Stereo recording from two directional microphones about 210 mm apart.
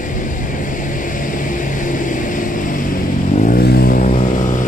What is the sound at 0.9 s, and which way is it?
Vehicle, 40° left (ahead or behind).